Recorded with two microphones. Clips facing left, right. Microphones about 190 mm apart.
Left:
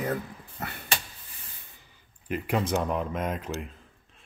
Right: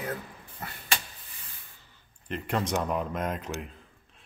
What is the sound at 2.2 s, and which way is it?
Speech, 5° left (ahead or behind).